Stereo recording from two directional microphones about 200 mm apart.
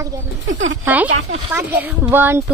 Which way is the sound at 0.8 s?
10° right (ahead or behind).